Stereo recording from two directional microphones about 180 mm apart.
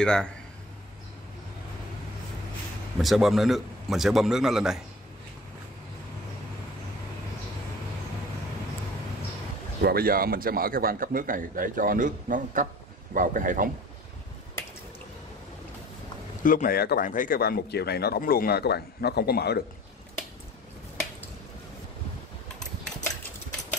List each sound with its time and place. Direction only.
0.0 s a man's voice: 5° left (ahead or behind)
3.0 s a man's voice: centre (ahead or behind)
9.8 s a man's voice: 60° right (ahead or behind)
16.4 s speech: 50° left (ahead or behind)